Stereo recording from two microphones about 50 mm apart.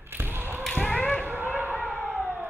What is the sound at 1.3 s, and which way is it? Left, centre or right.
Fireworks, right.